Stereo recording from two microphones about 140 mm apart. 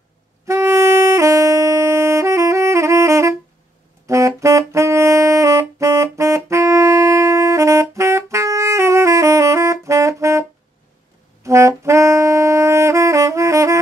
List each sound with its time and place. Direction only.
0.5 s music: 20° right (ahead or behind)
4.1 s saxophone: 20° right (ahead or behind)
11.4 s saxophone: 20° right (ahead or behind)